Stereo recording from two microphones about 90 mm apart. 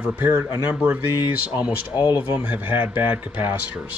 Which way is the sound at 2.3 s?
20° right (ahead or behind).